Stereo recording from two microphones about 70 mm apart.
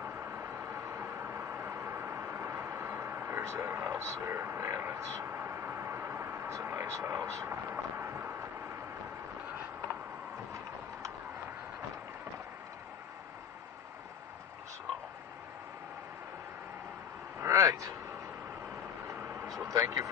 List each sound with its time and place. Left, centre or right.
0.0 s vehicle: right
6.5 s speech: right
17.4 s a sound: right
19.0 s vehicle: right
19.7 s vehicle: right